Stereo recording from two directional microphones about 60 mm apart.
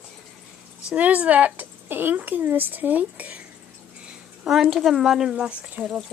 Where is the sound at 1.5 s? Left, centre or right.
Right.